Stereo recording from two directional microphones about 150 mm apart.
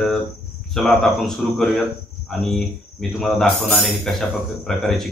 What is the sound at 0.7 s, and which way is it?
Speech, 5° left (ahead or behind).